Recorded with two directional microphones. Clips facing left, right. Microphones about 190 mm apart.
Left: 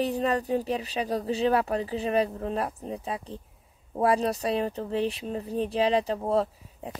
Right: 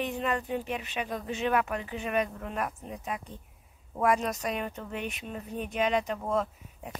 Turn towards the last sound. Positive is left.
turn(degrees=30)  # may be behind; listen again after turning